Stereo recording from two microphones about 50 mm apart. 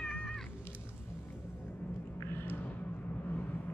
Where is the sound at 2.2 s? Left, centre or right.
Left.